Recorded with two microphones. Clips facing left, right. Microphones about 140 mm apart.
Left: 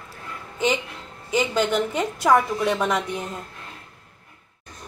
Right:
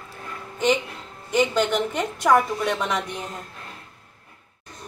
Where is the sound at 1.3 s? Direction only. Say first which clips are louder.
Right 1 dB; 5° left (ahead or behind).